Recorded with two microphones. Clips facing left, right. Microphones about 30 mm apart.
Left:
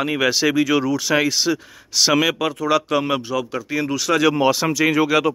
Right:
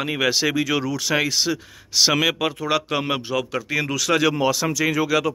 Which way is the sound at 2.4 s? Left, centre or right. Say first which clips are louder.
Left 3 dB; centre.